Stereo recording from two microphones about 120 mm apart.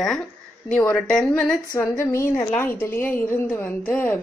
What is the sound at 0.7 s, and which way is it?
Speech, 5° left (ahead or behind).